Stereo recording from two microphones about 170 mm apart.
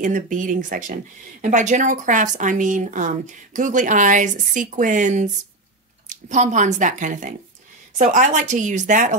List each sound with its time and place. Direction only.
0.0 s a woman's voice: 50° right (ahead or behind)